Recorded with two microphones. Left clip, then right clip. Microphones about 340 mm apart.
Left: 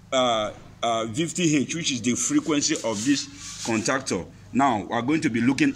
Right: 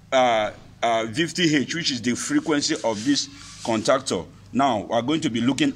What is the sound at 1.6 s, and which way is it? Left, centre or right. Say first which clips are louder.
Speech: right 2 dB; right.